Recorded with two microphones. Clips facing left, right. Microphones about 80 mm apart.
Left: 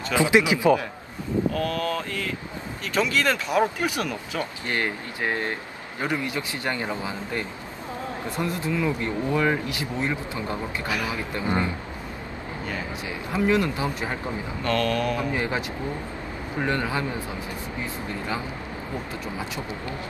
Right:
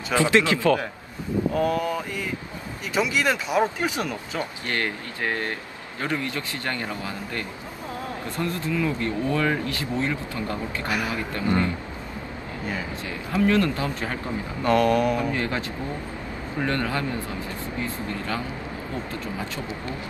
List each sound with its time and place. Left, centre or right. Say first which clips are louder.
0.1 s speech: even; centre
1.5 s speech: right 3 dB; centre
4.6 s speech: even; left
13.3 s speech: right 1 dB; centre
14.6 s speech: right 5 dB; centre
15.3 s speech: even; centre
16.6 s speech: even; centre